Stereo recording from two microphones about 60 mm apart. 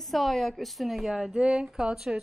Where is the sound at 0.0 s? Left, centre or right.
Centre.